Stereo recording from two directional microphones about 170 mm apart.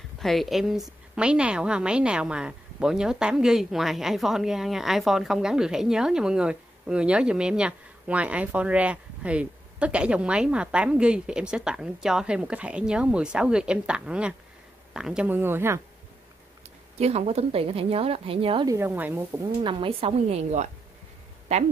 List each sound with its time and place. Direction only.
0.2 s a woman's voice: centre (ahead or behind)
17.0 s a woman's voice: 40° right (ahead or behind)
18.7 s speech: 10° right (ahead or behind)
19.6 s a woman's voice: 30° right (ahead or behind)